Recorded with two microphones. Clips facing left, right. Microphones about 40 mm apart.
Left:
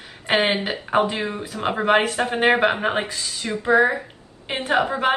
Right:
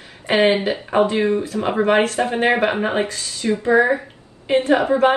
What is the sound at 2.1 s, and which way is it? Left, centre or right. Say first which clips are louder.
A woman's voice: right 1 dB; left.